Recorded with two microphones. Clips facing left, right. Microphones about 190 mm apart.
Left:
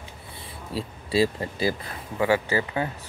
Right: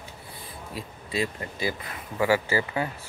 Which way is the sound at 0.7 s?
30° left (ahead or behind).